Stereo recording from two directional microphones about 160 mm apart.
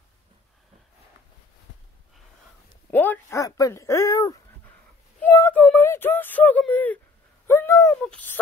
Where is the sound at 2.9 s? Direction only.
10° left (ahead or behind).